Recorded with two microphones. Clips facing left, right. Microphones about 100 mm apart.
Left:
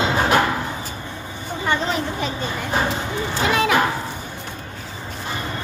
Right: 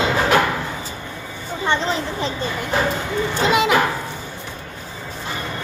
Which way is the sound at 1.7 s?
25° right (ahead or behind).